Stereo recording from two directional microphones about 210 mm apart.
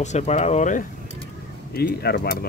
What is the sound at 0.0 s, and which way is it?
Speech, 30° left (ahead or behind).